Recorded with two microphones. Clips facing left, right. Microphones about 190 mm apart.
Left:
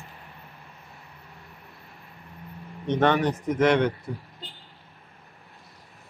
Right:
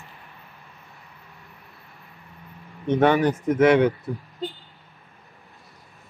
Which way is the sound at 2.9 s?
5° right (ahead or behind).